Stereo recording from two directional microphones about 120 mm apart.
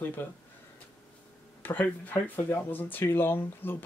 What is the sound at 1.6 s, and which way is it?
Speech, 15° left (ahead or behind).